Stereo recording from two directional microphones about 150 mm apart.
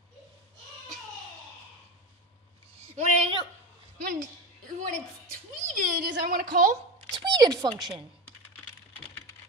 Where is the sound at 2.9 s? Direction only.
45° right (ahead or behind).